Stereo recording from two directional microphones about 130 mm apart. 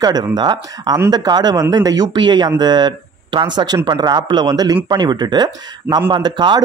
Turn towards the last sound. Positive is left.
turn(degrees=-35)  # may be behind; listen again after turning